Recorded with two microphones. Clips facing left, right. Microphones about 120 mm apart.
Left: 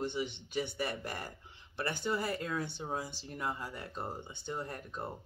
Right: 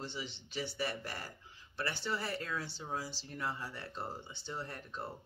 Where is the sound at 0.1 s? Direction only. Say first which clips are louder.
Left 7 dB; 55° left (ahead or behind).